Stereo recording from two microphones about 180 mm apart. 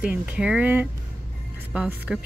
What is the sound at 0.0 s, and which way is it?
Speech, 5° right (ahead or behind).